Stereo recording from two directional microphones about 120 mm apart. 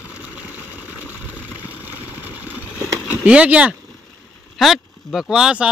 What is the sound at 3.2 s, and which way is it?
Speech, 10° right (ahead or behind).